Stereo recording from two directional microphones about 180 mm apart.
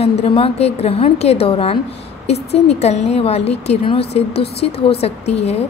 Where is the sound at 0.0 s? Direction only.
35° left (ahead or behind).